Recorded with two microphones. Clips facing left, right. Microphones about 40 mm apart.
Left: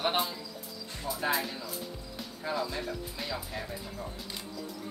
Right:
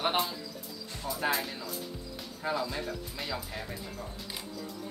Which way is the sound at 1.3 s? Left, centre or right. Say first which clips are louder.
Left 1 dB; centre.